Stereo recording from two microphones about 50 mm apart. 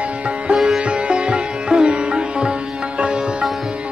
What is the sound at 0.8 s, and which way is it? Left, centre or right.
Sitar, right.